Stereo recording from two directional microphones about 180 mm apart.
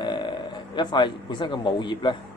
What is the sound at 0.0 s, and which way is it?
Speech, 25° left (ahead or behind).